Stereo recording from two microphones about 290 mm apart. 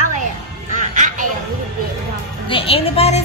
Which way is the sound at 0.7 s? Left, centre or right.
Right.